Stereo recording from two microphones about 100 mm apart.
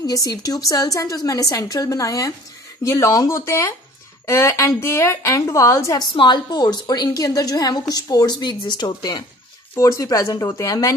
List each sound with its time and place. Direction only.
0.0 s a woman's voice: 40° left (ahead or behind)
6.1 s a woman's voice: 50° left (ahead or behind)
9.8 s a woman's voice: 30° left (ahead or behind)